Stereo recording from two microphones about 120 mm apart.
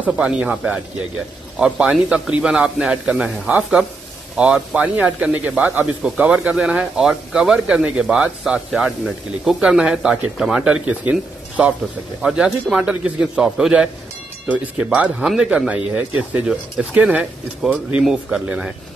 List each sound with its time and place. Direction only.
0.0 s a man's voice: 5° right (ahead or behind)